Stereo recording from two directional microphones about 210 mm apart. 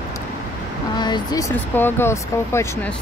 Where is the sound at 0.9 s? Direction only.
20° left (ahead or behind).